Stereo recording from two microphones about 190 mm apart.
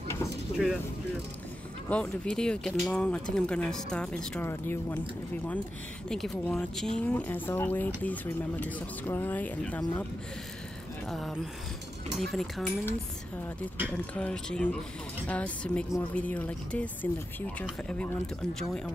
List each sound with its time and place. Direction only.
0.5 s a sound: 30° left (ahead or behind)
1.9 s speech: 5° left (ahead or behind)
6.0 s speech: 5° left (ahead or behind)
11.1 s speech: centre (ahead or behind)
14.1 s speech: 5° left (ahead or behind)